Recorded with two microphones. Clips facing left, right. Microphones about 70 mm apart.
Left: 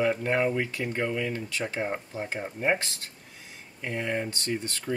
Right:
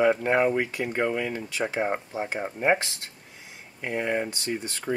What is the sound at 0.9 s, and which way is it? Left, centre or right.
Speech, right.